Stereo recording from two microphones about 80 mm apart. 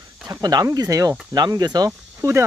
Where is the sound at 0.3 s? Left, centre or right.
Right.